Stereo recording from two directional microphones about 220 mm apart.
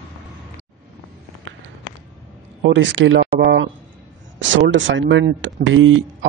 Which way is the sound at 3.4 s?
50° right (ahead or behind).